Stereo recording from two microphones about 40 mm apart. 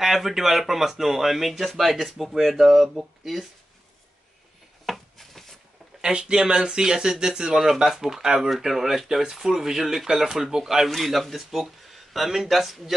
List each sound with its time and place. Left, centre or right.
0.0 s speech: centre
4.8 s a sound: centre
5.9 s speech: right
10.9 s speech: centre